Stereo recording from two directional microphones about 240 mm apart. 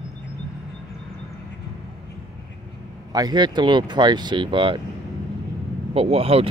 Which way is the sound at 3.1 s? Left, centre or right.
Centre.